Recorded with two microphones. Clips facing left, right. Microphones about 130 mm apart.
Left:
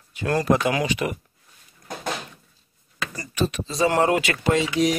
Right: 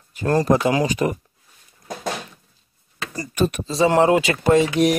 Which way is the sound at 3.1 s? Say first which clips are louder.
Right 5 dB; 45° right (ahead or behind).